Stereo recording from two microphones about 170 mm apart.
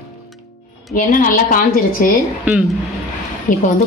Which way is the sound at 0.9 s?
50° left (ahead or behind).